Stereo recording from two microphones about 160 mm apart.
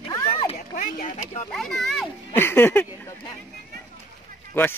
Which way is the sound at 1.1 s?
45° left (ahead or behind).